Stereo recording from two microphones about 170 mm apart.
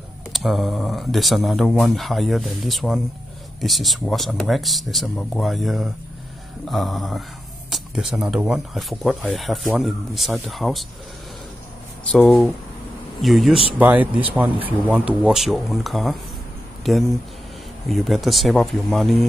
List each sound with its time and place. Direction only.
0.3 s speech: centre (ahead or behind)
12.1 s speech: centre (ahead or behind)
17.8 s speech: centre (ahead or behind)